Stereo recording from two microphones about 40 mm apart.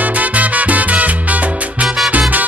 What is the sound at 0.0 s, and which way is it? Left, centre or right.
Salsa music, right.